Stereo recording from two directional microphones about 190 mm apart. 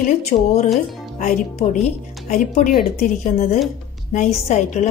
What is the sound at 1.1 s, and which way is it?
A woman's voice, 45° left (ahead or behind).